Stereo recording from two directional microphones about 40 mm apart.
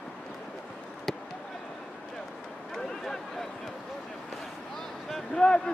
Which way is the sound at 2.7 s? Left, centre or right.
Centre.